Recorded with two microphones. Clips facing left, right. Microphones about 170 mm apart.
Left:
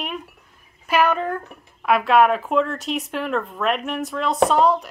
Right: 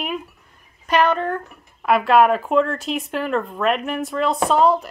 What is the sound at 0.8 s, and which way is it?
A child's voice, 5° left (ahead or behind).